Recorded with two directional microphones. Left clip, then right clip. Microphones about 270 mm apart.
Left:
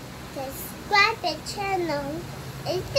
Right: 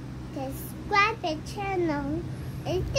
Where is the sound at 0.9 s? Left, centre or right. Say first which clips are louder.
Left 3 dB; centre.